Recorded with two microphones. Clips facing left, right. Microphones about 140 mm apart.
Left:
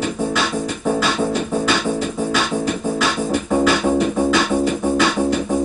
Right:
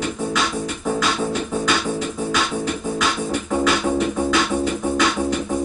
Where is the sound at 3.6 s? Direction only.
35° left (ahead or behind).